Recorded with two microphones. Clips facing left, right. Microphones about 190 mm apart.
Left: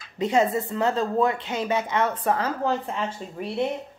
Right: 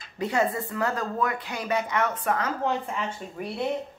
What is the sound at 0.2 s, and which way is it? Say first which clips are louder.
Speech: left 4 dB; 20° left (ahead or behind).